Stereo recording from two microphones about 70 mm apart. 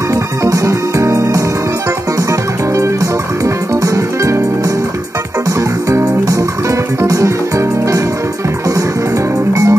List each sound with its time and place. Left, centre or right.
0.1 s music: right
3.8 s music: right
5.9 s music: right
9.5 s music: right